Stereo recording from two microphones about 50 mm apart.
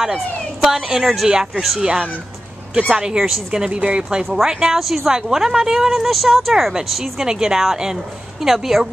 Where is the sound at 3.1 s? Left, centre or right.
Centre.